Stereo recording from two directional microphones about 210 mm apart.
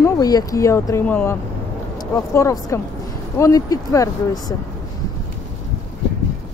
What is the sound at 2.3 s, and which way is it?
Speech, 15° left (ahead or behind).